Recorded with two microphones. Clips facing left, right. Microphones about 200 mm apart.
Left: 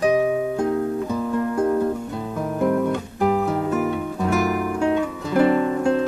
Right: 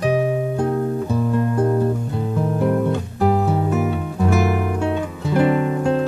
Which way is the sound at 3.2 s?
40° right (ahead or behind).